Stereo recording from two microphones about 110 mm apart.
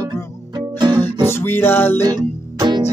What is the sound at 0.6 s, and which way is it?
Music, 40° right (ahead or behind).